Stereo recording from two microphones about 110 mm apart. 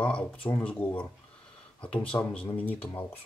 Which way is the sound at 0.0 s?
10° left (ahead or behind).